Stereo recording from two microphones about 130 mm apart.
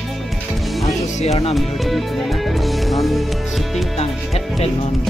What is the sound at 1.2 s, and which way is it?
Speech, 55° left (ahead or behind).